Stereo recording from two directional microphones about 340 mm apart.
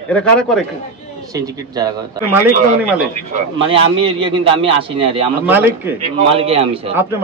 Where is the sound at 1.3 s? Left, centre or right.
Centre.